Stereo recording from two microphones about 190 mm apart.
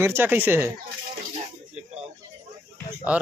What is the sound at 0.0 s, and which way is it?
Speech, 10° right (ahead or behind).